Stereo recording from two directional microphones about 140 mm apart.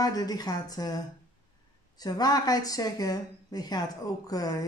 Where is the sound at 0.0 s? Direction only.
25° left (ahead or behind).